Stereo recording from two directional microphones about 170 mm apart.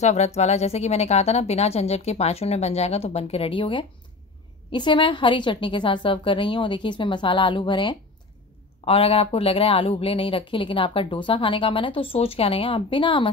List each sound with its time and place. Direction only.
0.0 s a woman's voice: 40° left (ahead or behind)